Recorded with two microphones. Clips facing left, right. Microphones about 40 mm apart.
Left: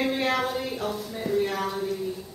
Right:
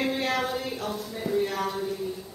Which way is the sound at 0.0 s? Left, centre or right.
Centre.